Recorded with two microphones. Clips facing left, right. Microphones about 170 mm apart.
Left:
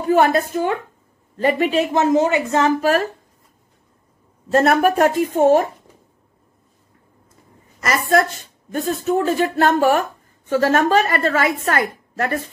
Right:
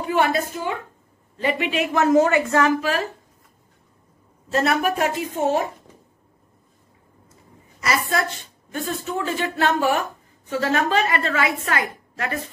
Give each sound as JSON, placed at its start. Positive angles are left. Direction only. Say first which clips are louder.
{"t": 0.0, "sound": "a woman's voice", "louder": "left 5 dB", "side_deg": 40}
{"t": 2.0, "sound": "a woman's voice", "louder": "right 1 dB", "side_deg": 20}
{"t": 2.8, "sound": "a woman's voice", "louder": "left 6 dB", "side_deg": 45}
{"t": 4.5, "sound": "a woman's voice", "louder": "left 6 dB", "side_deg": 50}
{"t": 7.8, "sound": "a woman's voice", "louder": "left 6 dB", "side_deg": 50}